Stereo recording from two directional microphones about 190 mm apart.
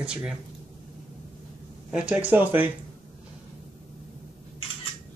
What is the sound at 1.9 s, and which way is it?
Speech, 5° right (ahead or behind).